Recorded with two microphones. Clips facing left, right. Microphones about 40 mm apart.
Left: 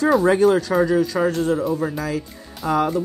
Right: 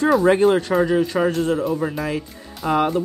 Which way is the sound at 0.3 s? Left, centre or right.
Right.